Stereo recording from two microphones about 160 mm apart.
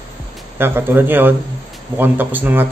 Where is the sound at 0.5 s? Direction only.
15° right (ahead or behind).